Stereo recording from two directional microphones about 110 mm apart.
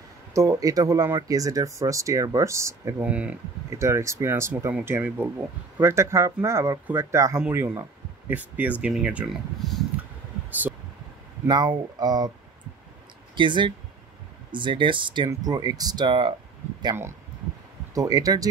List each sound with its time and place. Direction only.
0.3 s speech: 30° right (ahead or behind)
3.0 s speech: 10° right (ahead or behind)
3.7 s speech: 25° right (ahead or behind)
8.3 s speech: 15° right (ahead or behind)
9.6 s speech: centre (ahead or behind)
11.4 s speech: 40° right (ahead or behind)
13.4 s speech: 45° right (ahead or behind)
15.2 s speech: 35° right (ahead or behind)
17.9 s speech: 35° right (ahead or behind)